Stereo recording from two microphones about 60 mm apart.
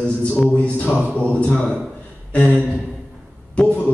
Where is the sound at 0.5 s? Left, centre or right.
Left.